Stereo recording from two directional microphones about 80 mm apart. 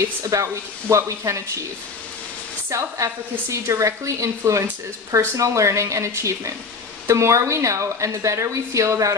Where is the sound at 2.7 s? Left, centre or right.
Right.